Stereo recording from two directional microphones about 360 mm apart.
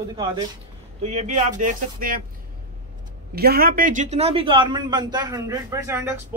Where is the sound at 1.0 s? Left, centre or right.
Centre.